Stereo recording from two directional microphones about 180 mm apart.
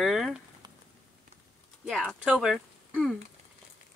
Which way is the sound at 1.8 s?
Centre (ahead or behind).